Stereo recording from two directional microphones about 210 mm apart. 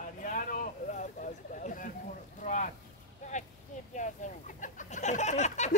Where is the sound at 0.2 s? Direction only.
40° left (ahead or behind).